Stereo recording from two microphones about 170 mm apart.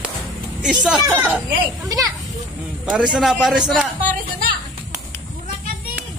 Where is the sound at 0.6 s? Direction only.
5° right (ahead or behind).